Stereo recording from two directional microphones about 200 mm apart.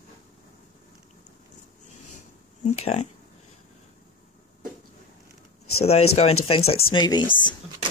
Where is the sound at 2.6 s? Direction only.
30° left (ahead or behind).